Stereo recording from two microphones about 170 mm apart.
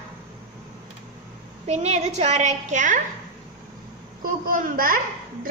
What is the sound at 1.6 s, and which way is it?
A woman's voice, 40° right (ahead or behind).